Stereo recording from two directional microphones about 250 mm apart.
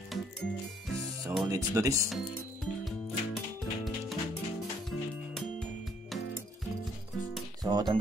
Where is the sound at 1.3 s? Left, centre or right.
Centre.